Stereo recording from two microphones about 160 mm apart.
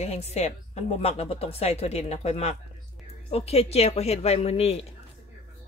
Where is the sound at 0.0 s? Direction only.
40° left (ahead or behind).